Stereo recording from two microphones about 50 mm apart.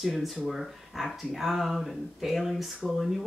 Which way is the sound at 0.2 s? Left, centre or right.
Centre.